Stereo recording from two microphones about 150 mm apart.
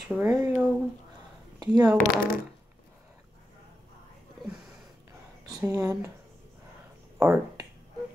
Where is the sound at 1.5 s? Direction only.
25° right (ahead or behind).